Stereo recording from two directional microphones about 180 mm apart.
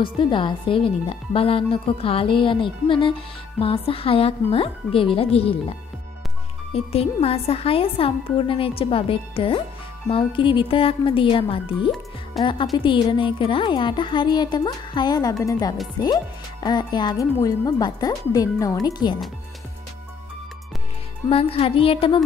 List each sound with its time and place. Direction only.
0.0 s a woman's voice: 25° left (ahead or behind)
12.4 s speech: centre (ahead or behind)
12.7 s a woman's voice: 25° left (ahead or behind)
21.3 s speech: 30° left (ahead or behind)